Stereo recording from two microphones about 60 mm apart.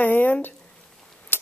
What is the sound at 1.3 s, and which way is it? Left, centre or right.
Scissors, left.